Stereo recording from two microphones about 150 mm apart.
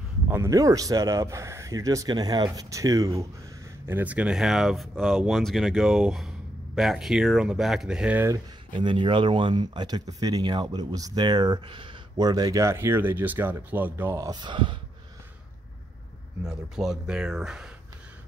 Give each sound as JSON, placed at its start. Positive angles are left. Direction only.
{"t": 0.3, "sound": "speech", "side_deg": -20}
{"t": 8.8, "sound": "speech", "side_deg": -35}
{"t": 16.4, "sound": "speech", "side_deg": -5}